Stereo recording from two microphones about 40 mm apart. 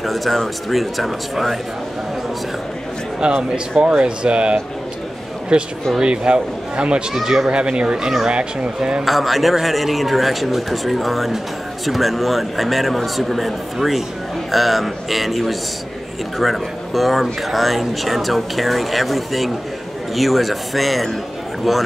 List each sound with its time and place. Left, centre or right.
0.0 s speech: centre
3.2 s speech: centre
9.0 s speech: centre